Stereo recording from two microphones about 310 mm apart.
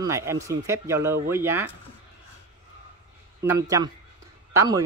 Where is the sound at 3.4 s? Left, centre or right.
Centre.